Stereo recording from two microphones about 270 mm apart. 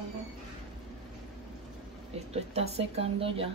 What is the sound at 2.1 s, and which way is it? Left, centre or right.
A woman's voice, right.